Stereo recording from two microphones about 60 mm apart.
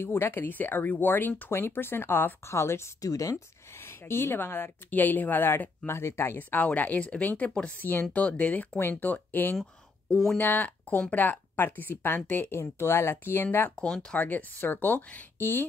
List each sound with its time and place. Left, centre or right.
0.0 s speech: left
2.5 s speech: left
3.0 s speech: left
7.8 s speech: left
13.7 s speech: centre
14.2 s speech: left